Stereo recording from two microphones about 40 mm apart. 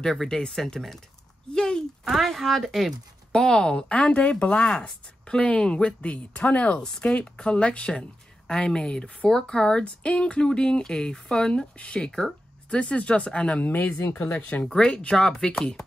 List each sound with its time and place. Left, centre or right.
0.0 s speech: centre
0.8 s speech: centre
1.5 s a sound: centre
2.0 s speech: centre
3.3 s speech: centre; by 4.6 s left
4.6 s speech: centre
10.4 s speech: centre
13.6 s speech: left
14.8 s speech: left